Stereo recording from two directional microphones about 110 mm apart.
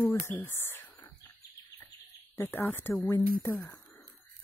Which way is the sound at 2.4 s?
20° left (ahead or behind).